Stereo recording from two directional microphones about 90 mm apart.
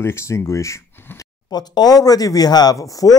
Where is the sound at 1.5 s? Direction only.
50° left (ahead or behind).